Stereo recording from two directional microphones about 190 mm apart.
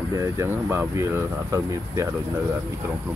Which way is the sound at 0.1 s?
15° right (ahead or behind).